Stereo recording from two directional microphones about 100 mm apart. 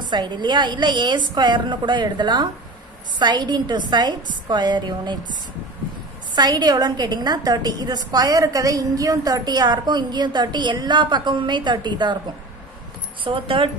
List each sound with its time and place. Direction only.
0.1 s a woman's voice: 45° right (ahead or behind)
6.3 s a woman's voice: 45° right (ahead or behind)
13.2 s speech: 60° right (ahead or behind)